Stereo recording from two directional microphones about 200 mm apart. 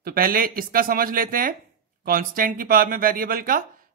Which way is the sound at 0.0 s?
45° right (ahead or behind).